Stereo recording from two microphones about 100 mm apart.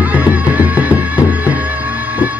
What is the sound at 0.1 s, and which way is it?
Music, 15° right (ahead or behind).